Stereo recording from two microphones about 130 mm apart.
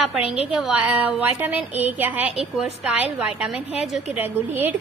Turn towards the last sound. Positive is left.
turn(degrees=-15)  # may be behind; listen again after turning